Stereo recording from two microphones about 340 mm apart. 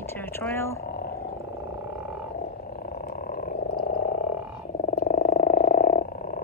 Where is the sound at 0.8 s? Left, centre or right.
Left.